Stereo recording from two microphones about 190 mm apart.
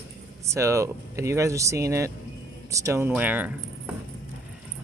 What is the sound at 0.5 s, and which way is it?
Speech, 15° right (ahead or behind).